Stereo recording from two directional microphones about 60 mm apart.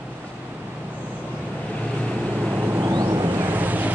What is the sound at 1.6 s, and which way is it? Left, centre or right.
Vehicle, centre.